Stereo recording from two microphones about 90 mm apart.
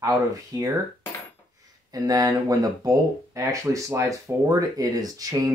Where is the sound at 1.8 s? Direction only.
45° right (ahead or behind).